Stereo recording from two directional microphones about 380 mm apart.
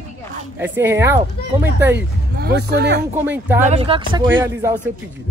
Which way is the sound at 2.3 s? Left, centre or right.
Right.